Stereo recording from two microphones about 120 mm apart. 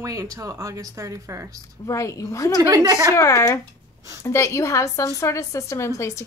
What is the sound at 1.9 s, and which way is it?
Speech, 25° left (ahead or behind).